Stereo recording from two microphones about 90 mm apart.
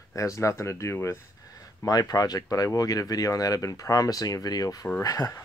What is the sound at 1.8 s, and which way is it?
Speech, 45° left (ahead or behind).